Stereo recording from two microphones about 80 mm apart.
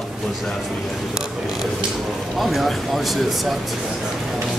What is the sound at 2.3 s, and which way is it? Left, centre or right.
Speech, centre.